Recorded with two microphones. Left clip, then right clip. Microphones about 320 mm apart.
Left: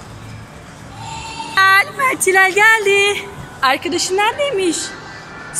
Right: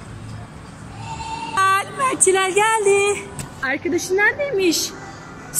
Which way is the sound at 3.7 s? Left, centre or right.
Left.